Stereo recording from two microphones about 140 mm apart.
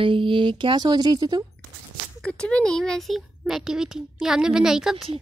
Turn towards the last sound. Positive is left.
turn(degrees=-5)  # may be behind; listen again after turning